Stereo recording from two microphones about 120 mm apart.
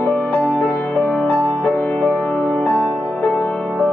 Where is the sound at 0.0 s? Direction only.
10° left (ahead or behind).